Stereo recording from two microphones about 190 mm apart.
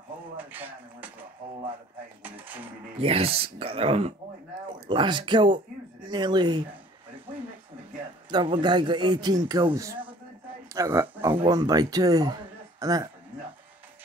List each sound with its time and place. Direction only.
0.4 s speech: 10° right (ahead or behind)
2.2 s speech: 10° right (ahead or behind)
3.0 s a man's voice: 30° right (ahead or behind)
8.3 s a man's voice: 25° right (ahead or behind)